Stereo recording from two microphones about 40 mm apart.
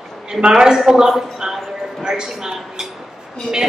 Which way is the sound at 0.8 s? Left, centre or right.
Centre.